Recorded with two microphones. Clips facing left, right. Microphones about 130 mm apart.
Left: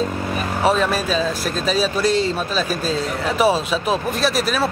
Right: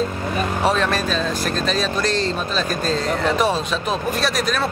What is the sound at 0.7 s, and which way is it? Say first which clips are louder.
Speech: left 3 dB; 5° left (ahead or behind).